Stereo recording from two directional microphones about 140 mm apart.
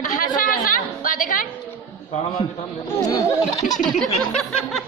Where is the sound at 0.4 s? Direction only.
75° left (ahead or behind).